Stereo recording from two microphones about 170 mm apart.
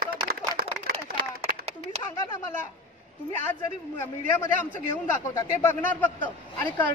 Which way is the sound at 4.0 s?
15° left (ahead or behind).